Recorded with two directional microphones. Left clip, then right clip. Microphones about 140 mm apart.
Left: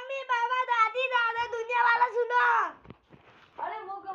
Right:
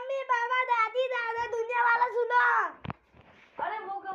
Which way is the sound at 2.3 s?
10° left (ahead or behind).